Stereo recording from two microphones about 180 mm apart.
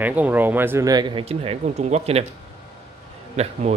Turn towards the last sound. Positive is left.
turn(degrees=-35)  # may be behind; listen again after turning